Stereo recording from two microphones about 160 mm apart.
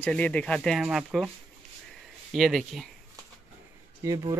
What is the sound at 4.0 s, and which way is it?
Speech, 25° right (ahead or behind).